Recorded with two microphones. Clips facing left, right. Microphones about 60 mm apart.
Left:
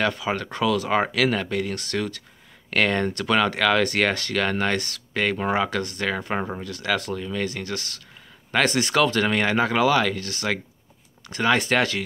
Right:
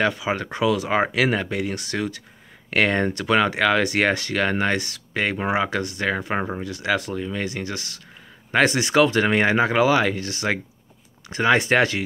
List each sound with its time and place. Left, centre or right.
0.0 s speech: centre